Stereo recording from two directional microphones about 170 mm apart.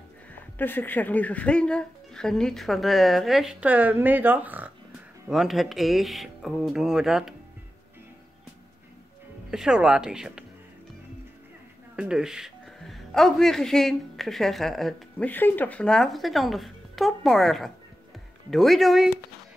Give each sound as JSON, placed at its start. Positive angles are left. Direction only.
{"t": 0.3, "sound": "speech", "side_deg": 10}
{"t": 9.5, "sound": "speech", "side_deg": -5}
{"t": 12.0, "sound": "speech", "side_deg": -5}